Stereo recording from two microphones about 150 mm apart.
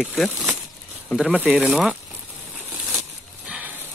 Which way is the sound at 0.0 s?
Centre (ahead or behind).